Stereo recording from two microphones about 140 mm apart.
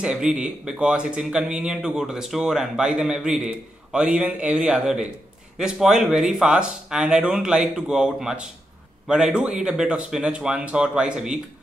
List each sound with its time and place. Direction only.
0.0 s a man's voice: 5° right (ahead or behind)